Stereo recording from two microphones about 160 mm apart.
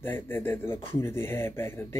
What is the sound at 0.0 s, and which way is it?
Speech, 15° left (ahead or behind).